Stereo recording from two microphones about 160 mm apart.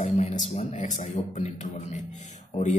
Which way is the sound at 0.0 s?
50° left (ahead or behind).